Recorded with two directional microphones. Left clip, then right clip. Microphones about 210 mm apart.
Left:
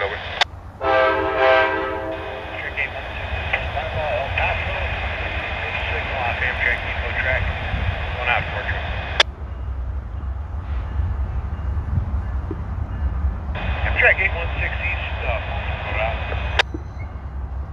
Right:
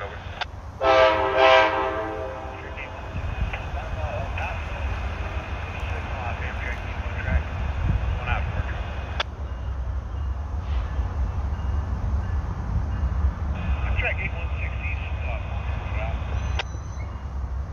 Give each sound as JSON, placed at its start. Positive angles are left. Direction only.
{"t": 0.0, "sound": "vehicle", "side_deg": 35}
{"t": 0.7, "sound": "train", "side_deg": -50}
{"t": 2.5, "sound": "vehicle", "side_deg": 35}
{"t": 13.6, "sound": "vehicle", "side_deg": 30}
{"t": 15.0, "sound": "a sound", "side_deg": 30}